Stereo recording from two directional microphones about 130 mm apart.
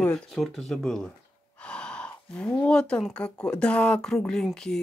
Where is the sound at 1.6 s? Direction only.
5° left (ahead or behind).